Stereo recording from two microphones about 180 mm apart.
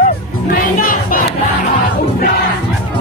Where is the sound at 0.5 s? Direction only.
50° left (ahead or behind).